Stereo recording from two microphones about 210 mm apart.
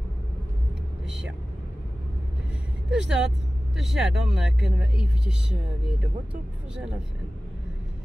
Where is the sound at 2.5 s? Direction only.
5° right (ahead or behind).